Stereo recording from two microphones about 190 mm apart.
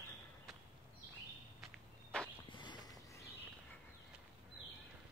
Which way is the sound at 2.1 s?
5° left (ahead or behind).